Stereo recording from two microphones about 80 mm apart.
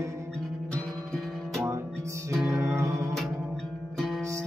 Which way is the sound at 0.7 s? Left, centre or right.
Centre.